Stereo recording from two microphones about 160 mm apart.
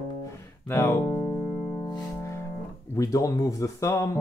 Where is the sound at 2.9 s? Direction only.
20° left (ahead or behind).